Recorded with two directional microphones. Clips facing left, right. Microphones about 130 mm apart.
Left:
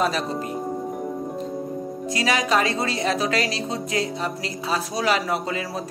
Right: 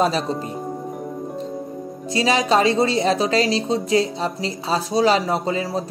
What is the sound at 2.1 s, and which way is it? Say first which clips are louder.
A woman's voice: right 4 dB; 25° right (ahead or behind).